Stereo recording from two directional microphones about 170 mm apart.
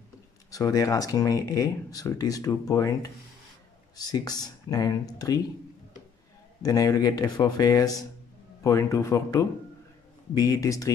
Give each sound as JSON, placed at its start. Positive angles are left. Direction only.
{"t": 0.5, "sound": "speech", "side_deg": 20}
{"t": 6.6, "sound": "speech", "side_deg": 20}